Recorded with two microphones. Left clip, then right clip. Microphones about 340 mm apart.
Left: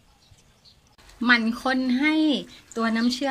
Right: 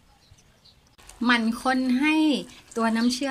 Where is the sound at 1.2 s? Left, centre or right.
Centre.